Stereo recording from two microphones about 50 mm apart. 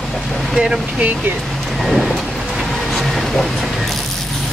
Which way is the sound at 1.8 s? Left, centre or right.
Centre.